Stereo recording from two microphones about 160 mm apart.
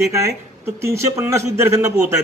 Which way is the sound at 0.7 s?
15° right (ahead or behind).